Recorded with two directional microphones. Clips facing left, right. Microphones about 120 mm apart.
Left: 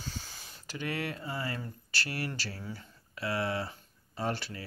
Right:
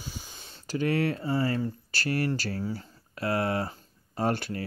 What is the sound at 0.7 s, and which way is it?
Speech, 35° right (ahead or behind).